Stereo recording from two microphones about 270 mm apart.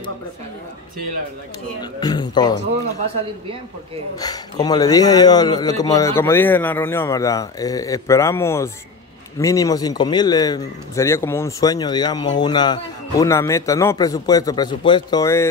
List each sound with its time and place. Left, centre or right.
1.8 s a man's voice: centre
4.2 s a man's voice: centre